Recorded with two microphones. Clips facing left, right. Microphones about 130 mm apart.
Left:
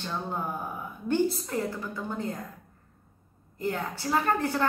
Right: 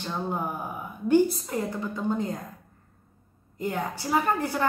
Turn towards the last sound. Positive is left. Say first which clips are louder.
# right 1 dB
turn(degrees=-10)  # may be behind; listen again after turning